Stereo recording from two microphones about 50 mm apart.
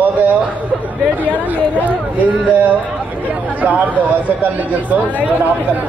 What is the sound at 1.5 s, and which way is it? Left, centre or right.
Speech, right.